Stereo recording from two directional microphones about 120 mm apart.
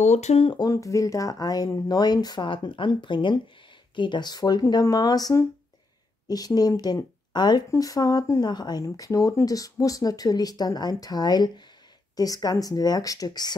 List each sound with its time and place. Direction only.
0.0 s speech: 70° left (ahead or behind)
0.7 s speech: 25° left (ahead or behind)